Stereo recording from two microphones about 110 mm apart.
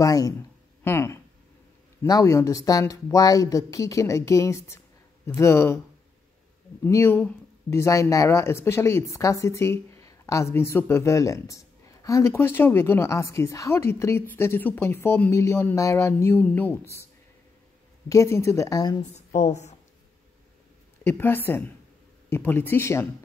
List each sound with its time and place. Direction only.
0.0 s speech: 35° left (ahead or behind)
0.8 s speech: 25° left (ahead or behind)
6.8 s speech: 25° left (ahead or behind)
21.0 s speech: 20° left (ahead or behind)